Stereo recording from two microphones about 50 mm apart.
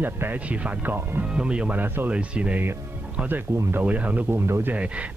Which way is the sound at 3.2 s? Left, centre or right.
Right.